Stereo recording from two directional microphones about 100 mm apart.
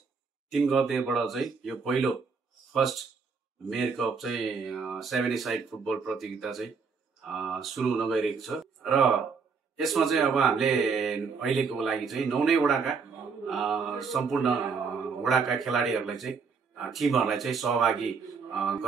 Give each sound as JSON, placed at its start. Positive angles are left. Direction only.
{"t": 0.5, "sound": "speech", "side_deg": 0}
{"t": 13.5, "sound": "mantra", "side_deg": 0}
{"t": 15.0, "sound": "a man's voice", "side_deg": 0}